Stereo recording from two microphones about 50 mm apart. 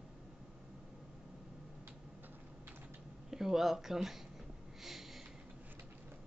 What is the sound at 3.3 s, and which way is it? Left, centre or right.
Speech, centre.